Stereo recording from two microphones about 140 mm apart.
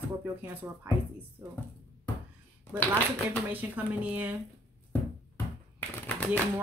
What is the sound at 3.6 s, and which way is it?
Speech, 10° right (ahead or behind).